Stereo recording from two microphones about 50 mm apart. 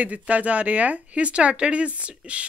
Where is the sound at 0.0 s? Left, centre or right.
Right.